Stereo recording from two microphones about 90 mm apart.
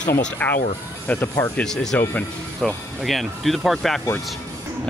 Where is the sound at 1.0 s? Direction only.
20° left (ahead or behind).